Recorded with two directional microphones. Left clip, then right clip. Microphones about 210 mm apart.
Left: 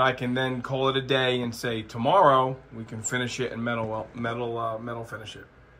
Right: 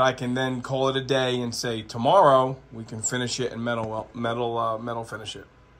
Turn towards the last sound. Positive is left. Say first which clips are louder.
# right 4 dB
turn(degrees=-5)  # may be behind; listen again after turning